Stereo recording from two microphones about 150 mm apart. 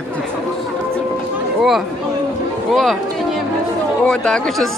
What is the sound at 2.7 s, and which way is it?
Speech, centre (ahead or behind).